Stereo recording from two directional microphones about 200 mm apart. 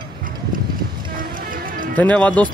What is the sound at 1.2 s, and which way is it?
Music, 45° right (ahead or behind).